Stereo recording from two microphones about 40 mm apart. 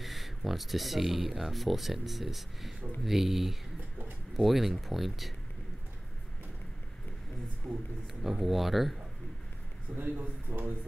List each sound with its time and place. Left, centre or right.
0.0 s speech: centre
7.7 s speech: centre
9.9 s speech: right